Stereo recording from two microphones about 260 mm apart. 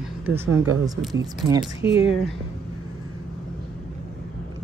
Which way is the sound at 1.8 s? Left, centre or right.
Left.